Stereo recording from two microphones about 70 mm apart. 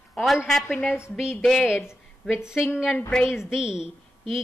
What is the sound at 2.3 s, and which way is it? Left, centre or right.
A woman's voice, centre.